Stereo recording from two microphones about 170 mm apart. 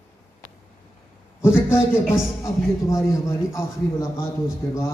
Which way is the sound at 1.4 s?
15° left (ahead or behind).